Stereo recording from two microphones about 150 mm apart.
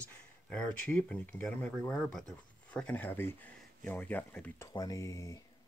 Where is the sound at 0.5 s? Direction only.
10° left (ahead or behind).